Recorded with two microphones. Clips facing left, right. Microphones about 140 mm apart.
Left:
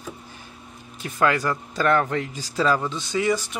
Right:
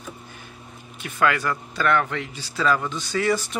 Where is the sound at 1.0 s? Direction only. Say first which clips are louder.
Left 1 dB; 35° left (ahead or behind).